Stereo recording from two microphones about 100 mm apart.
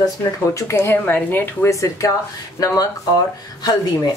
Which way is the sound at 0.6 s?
25° left (ahead or behind).